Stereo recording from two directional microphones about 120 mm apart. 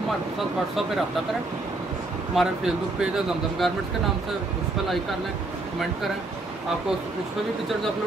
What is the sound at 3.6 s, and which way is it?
Speech, centre (ahead or behind).